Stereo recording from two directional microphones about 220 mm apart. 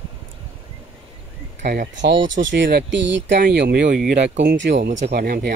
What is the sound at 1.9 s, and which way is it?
Speech, 55° right (ahead or behind).